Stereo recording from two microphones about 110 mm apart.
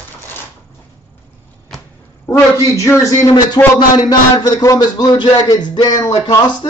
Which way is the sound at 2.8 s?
30° left (ahead or behind).